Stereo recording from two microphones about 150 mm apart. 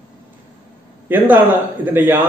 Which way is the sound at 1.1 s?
15° right (ahead or behind).